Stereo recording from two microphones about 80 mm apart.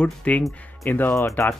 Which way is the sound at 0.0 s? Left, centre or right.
Centre.